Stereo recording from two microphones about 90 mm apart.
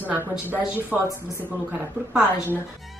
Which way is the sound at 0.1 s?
25° right (ahead or behind).